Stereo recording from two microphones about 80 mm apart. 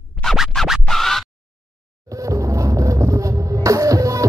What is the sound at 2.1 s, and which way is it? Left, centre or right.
Music, right.